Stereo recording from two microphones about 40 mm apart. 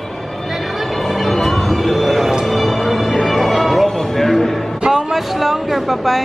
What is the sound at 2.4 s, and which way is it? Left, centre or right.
Music, centre.